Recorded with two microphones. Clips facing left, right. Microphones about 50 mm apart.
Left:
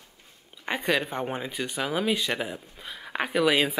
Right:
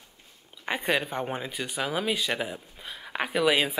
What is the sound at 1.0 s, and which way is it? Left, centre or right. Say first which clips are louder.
Speech: left 1 dB; centre.